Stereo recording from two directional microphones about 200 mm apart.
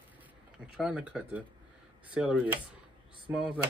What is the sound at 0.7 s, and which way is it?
Speech, 5° right (ahead or behind).